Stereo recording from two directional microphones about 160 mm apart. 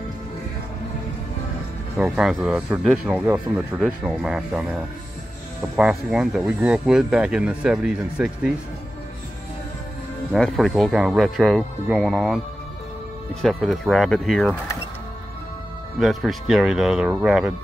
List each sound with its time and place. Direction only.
2.0 s speech: 5° right (ahead or behind)
5.8 s speech: 5° right (ahead or behind)
10.3 s speech: centre (ahead or behind)
13.4 s speech: centre (ahead or behind)
16.0 s speech: centre (ahead or behind)